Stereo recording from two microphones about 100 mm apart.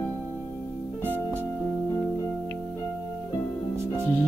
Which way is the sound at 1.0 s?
20° right (ahead or behind).